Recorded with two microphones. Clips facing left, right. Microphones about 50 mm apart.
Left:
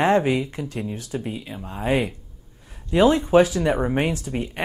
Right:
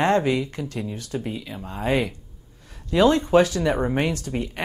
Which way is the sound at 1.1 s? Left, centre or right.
Centre.